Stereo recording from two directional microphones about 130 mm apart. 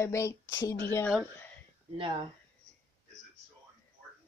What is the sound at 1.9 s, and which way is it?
Speech, 40° right (ahead or behind).